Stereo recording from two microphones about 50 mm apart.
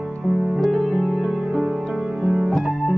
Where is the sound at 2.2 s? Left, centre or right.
Centre.